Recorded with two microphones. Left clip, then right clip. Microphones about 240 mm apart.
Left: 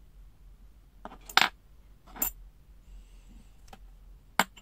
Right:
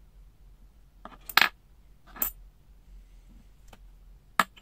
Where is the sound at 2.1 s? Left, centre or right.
Left.